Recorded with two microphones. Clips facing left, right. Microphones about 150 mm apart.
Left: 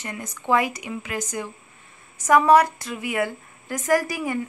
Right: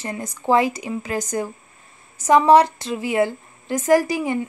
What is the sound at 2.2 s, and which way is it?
A woman's voice, 25° right (ahead or behind).